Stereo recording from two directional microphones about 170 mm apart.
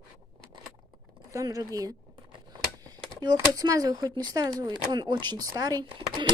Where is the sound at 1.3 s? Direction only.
20° right (ahead or behind).